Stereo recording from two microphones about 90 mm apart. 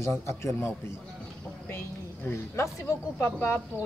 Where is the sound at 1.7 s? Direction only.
25° left (ahead or behind).